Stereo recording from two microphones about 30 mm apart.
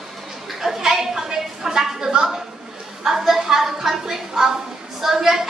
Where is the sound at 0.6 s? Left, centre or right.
Centre.